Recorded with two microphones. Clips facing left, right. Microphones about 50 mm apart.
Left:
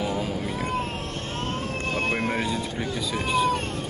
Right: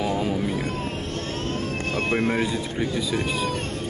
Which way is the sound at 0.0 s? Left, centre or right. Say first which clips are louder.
Right 3 dB; centre.